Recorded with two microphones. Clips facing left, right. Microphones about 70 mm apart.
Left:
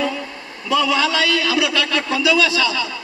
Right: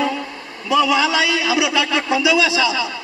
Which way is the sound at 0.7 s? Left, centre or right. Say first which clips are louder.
Right 2 dB; centre.